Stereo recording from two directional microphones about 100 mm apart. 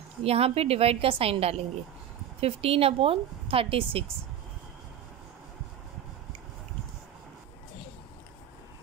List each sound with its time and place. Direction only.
0.2 s a woman's voice: 80° right; by 4.0 s 65° right (ahead or behind)